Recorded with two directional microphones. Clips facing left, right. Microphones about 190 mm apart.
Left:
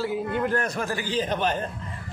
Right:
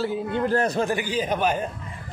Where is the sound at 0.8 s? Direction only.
15° right (ahead or behind).